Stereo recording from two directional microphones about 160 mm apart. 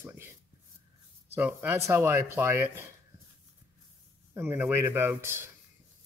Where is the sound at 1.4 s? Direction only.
10° right (ahead or behind).